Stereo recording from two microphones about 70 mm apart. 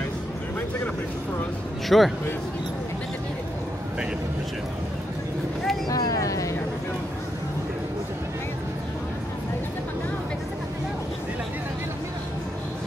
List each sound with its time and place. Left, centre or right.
1.9 s a man's voice: centre
5.9 s vehicle: left